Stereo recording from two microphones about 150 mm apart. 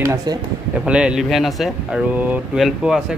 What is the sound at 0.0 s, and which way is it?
Speech, 20° right (ahead or behind).